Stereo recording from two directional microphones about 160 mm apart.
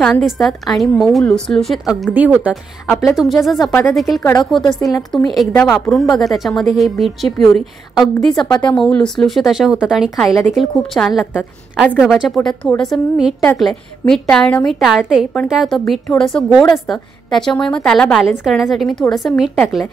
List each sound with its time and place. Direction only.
0.0 s a woman's voice: centre (ahead or behind)
4.2 s a woman's voice: 15° left (ahead or behind)
4.5 s a woman's voice: centre (ahead or behind)